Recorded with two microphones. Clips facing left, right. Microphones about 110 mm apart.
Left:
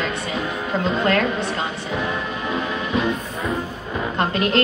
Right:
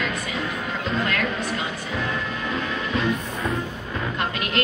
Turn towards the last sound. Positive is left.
turn(degrees=35)  # may be behind; listen again after turning